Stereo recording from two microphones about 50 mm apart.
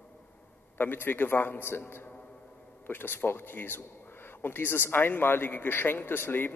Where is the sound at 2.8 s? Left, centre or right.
Left.